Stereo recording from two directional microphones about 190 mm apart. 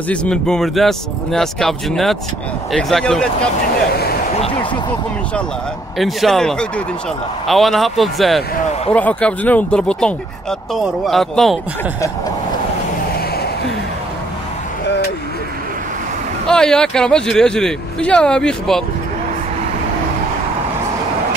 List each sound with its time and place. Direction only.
0.1 s speech: 5° left (ahead or behind)
3.9 s a sound: 55° left (ahead or behind)
5.9 s speech: centre (ahead or behind)
16.4 s speech: 5° left (ahead or behind)